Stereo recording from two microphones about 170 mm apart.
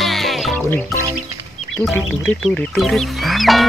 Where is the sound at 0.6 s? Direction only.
10° left (ahead or behind).